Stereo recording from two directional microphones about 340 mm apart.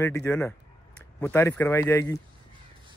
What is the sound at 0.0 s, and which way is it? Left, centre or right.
A man's voice, centre.